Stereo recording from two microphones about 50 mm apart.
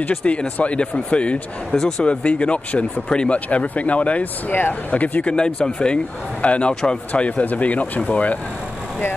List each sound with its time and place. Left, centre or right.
0.1 s a man's voice: centre
1.8 s speech: centre
2.0 s a man's voice: left
4.9 s a man's voice: left
6.7 s speech: centre
7.1 s a man's voice: left